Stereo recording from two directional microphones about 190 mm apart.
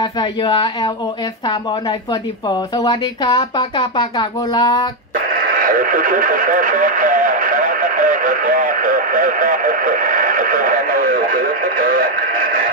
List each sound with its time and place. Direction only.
0.0 s speech: 25° left (ahead or behind)
2.5 s speech: 20° left (ahead or behind)
5.6 s radio: 45° right (ahead or behind)